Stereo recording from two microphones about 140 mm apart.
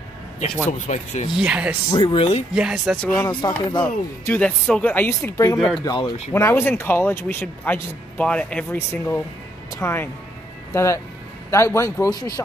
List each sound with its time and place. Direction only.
0.7 s speech: 60° left (ahead or behind)
1.3 s speech: 10° right (ahead or behind)
1.9 s speech: 30° left (ahead or behind)
2.1 s speech: 40° left (ahead or behind)
2.5 s speech: 5° right (ahead or behind)
3.3 s speech: 35° left (ahead or behind)
3.8 s a man's voice: 10° left (ahead or behind)
5.8 s speech: 35° left (ahead or behind)
6.3 s a man's voice: 20° left (ahead or behind)